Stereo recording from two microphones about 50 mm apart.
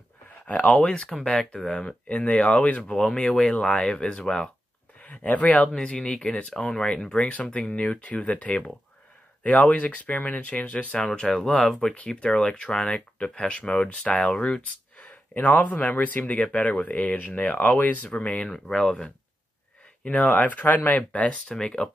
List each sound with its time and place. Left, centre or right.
0.5 s speech: left
5.0 s speech: left; by 7.2 s centre
7.2 s speech: left
11.1 s speech: centre
11.9 s speech: left
18.2 s speech: left
20.1 s speech: left